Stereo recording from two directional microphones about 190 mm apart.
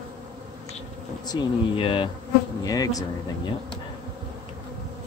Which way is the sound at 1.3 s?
25° left (ahead or behind).